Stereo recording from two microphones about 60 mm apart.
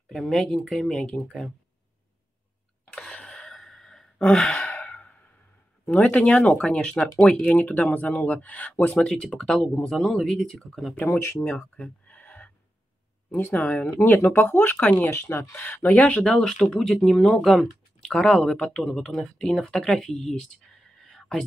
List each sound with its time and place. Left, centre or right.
0.1 s speech: centre
0.9 s speech: centre
3.1 s a sound: left
3.5 s sigh: centre
4.5 s sigh: left
5.9 s speech: left
7.2 s speech: left
12.2 s a sound: left
13.3 s speech: left
15.0 s speech: left
15.6 s speech: left
16.3 s speech: centre